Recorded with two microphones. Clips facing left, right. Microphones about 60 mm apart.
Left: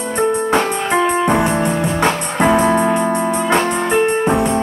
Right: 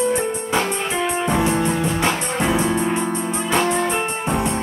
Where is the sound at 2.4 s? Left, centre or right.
Left.